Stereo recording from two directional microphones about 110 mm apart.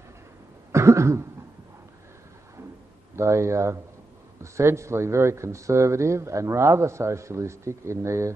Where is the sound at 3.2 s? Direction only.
25° right (ahead or behind).